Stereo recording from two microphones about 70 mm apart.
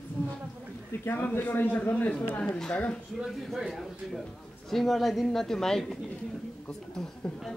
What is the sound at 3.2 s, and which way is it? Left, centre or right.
Speech, centre.